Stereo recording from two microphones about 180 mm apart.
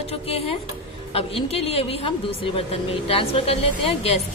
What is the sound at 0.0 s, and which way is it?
A woman's voice, 35° left (ahead or behind).